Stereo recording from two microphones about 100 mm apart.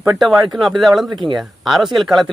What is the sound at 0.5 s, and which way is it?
Speech, centre (ahead or behind).